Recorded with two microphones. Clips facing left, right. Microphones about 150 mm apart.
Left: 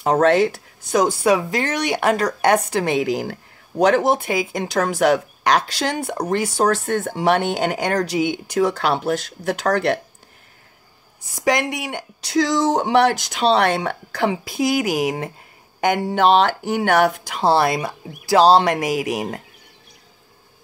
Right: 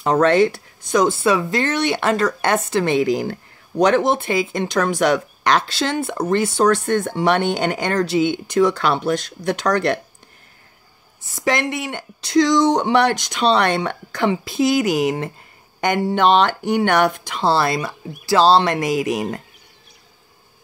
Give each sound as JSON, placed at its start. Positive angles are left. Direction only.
{"t": 0.0, "sound": "speech", "side_deg": 10}
{"t": 6.6, "sound": "speech", "side_deg": 35}
{"t": 7.2, "sound": "speech", "side_deg": 10}
{"t": 8.7, "sound": "speech", "side_deg": 35}
{"t": 11.3, "sound": "speech", "side_deg": 15}